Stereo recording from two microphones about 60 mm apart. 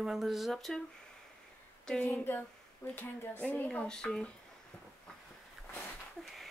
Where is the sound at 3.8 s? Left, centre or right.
Centre.